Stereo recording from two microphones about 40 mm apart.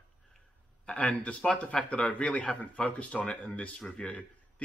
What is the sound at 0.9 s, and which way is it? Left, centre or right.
Speech, left.